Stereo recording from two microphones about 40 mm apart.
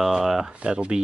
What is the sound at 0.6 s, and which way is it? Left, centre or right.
Speech, right.